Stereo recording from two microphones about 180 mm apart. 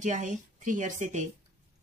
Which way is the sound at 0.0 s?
45° right (ahead or behind).